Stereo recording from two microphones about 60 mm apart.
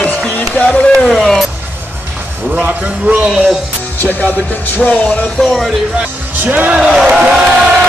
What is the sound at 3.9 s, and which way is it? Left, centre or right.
Speech, left.